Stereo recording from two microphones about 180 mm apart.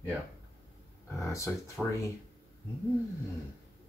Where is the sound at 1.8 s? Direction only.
5° left (ahead or behind).